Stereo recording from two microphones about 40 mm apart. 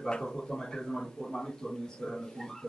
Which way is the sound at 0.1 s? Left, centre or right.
Centre.